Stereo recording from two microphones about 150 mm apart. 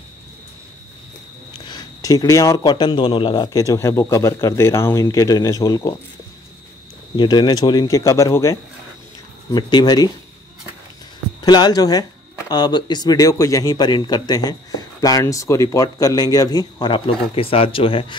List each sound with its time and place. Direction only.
1.7 s speech: 25° left (ahead or behind)
7.2 s speech: 30° left (ahead or behind)
11.4 s speech: 30° left (ahead or behind)